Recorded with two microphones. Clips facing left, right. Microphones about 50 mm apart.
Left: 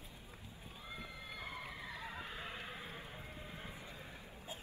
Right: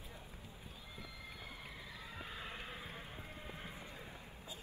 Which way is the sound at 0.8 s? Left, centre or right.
Left.